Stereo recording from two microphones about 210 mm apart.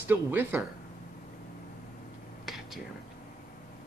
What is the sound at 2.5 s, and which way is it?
Whispering, centre (ahead or behind).